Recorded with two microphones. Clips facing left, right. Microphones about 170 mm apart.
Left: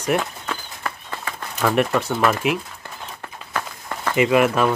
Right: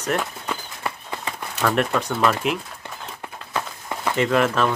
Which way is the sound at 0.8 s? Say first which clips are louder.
Right 1 dB; 20° right (ahead or behind).